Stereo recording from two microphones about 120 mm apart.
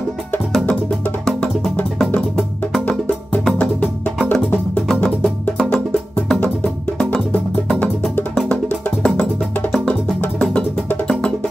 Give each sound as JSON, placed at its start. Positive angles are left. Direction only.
{"t": 1.2, "sound": "music", "side_deg": 5}
{"t": 3.4, "sound": "music", "side_deg": 10}